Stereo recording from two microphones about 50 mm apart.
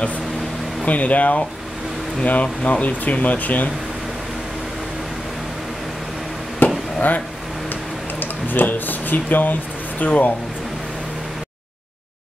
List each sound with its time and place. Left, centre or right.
0.8 s speech: left
6.6 s chop: left
8.2 s speech: left